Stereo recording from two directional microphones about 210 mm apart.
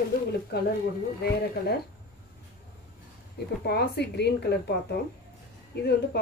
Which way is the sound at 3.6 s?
50° left (ahead or behind).